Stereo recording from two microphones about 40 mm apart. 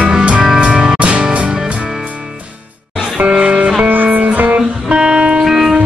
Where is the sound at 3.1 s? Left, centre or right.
Right.